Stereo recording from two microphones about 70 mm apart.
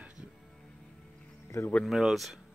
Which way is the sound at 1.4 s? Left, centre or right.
Left.